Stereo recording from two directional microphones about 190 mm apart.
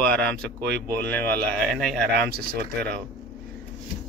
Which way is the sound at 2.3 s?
60° right (ahead or behind).